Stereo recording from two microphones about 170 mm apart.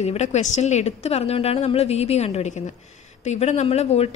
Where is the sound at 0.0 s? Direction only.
40° left (ahead or behind).